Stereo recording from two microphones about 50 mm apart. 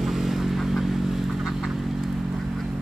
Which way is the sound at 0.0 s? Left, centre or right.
Centre.